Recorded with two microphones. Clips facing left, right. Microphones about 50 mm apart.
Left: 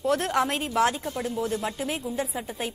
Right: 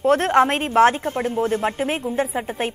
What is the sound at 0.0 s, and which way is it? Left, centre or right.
A woman's voice, right.